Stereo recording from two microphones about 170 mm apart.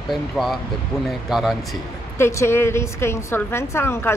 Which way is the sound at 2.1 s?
15° left (ahead or behind).